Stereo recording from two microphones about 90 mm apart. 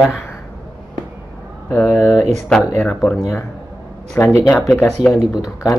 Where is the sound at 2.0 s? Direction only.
25° left (ahead or behind).